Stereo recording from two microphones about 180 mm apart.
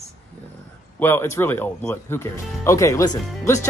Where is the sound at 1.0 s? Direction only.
10° left (ahead or behind).